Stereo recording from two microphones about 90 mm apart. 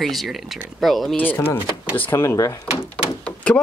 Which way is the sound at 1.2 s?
20° left (ahead or behind).